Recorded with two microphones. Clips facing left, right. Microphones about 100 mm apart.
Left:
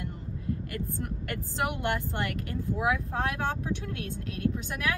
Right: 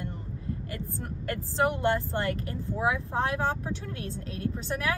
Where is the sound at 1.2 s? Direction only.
35° right (ahead or behind).